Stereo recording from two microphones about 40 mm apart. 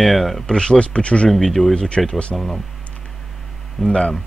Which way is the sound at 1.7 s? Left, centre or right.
Left.